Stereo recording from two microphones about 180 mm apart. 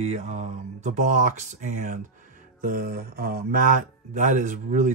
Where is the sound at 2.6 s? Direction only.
55° right (ahead or behind).